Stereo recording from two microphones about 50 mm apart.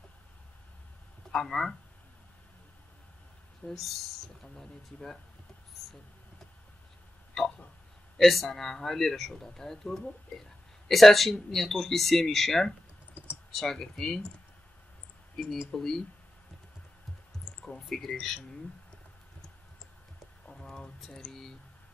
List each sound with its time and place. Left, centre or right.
1.3 s speech: centre
3.6 s speech: centre
5.8 s a sound: centre
7.4 s a sound: centre
8.2 s a man's voice: centre
15.4 s speech: centre
17.5 s a sound: left
17.8 s a man's voice: centre
20.6 s speech: centre